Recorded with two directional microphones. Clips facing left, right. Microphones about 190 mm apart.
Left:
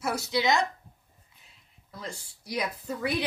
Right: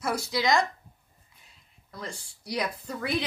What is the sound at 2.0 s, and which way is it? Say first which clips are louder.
Speech: right 1 dB; 10° left (ahead or behind).